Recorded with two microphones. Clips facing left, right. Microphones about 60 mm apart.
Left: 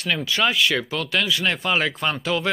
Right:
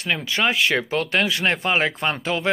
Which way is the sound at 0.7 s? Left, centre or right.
Right.